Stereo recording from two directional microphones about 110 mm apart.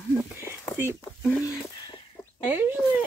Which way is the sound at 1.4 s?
30° left (ahead or behind).